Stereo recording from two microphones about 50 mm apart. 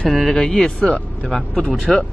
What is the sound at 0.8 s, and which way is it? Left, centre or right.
Speech, left.